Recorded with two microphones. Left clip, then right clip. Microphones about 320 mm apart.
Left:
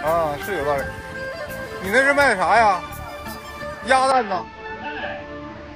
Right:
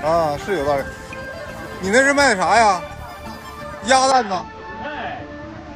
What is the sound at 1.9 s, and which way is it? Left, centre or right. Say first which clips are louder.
Speech: right 2 dB; centre.